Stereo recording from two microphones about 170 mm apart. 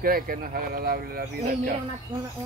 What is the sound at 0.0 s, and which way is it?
Speech, 60° right (ahead or behind).